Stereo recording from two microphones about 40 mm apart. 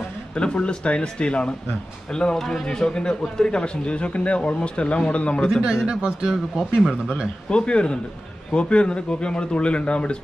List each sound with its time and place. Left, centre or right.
0.3 s a man's voice: left
2.3 s a man's voice: centre; by 5.4 s left
5.9 s a man's voice: right
6.5 s speech: centre
7.4 s a man's voice: left